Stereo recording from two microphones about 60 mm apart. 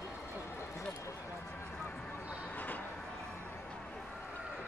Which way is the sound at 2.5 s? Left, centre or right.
Left.